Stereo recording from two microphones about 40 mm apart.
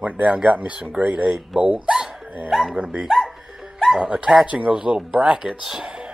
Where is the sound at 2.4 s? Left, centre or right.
Centre.